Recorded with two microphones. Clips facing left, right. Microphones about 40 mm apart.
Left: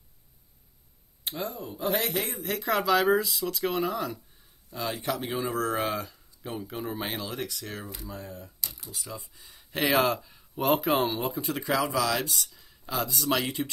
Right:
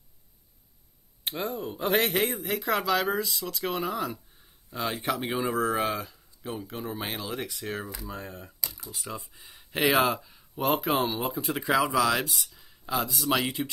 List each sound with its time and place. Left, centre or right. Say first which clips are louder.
1.2 s speech: right 3 dB; right
1.8 s a man's voice: right 3 dB; right
2.3 s speech: even; centre
4.6 s speech: right 1 dB; right
5.3 s speech: right 2 dB; centre
7.4 s speech: right 3 dB; right
8.1 s a man's voice: right 1 dB; right
9.0 s speech: right 4 dB; right; by 11.5 s centre
11.5 s speech: right 3 dB; centre
12.2 s speech: even; centre